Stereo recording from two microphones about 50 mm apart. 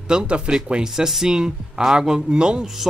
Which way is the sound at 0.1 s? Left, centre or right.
Centre.